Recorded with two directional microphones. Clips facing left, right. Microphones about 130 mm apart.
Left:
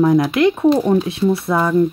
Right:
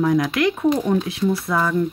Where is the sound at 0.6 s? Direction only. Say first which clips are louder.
Left 4 dB; 40° left (ahead or behind).